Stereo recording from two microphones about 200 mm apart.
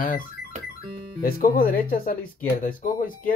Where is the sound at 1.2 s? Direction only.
45° left (ahead or behind).